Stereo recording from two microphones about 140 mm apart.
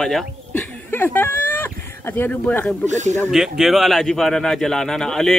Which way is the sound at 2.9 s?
55° right (ahead or behind).